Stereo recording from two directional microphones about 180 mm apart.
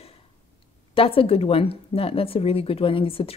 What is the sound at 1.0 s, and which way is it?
Speech, 30° left (ahead or behind).